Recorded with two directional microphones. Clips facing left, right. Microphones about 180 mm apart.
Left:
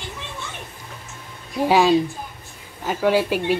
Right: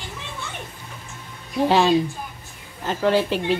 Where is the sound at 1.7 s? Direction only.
10° left (ahead or behind).